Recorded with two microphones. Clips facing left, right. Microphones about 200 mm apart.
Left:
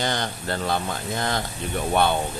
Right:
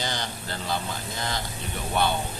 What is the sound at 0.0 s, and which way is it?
Speech, 55° left (ahead or behind).